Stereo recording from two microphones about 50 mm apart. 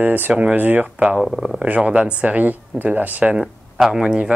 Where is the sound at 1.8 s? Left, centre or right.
Right.